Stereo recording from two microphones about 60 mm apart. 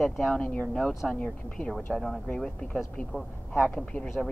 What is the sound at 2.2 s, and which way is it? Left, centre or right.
Speech, centre.